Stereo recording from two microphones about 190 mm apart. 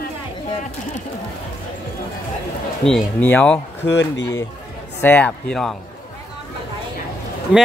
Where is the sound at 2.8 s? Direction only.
5° left (ahead or behind).